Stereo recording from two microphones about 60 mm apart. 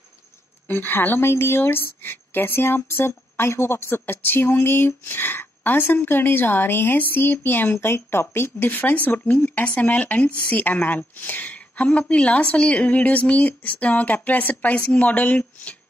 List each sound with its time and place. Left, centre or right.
0.7 s a woman's voice: left